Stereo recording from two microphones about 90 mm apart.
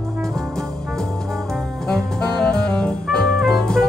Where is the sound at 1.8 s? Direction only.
5° left (ahead or behind).